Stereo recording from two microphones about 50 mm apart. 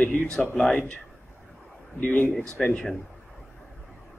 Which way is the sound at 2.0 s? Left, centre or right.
Left.